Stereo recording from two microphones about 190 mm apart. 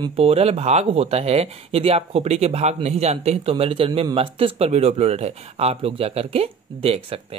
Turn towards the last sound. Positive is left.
turn(degrees=-30)  # may be behind; listen again after turning